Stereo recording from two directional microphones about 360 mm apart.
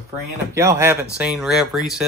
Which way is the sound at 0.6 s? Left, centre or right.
Centre.